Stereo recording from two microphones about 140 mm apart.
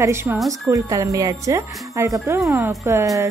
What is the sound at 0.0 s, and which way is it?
Speech, 20° right (ahead or behind).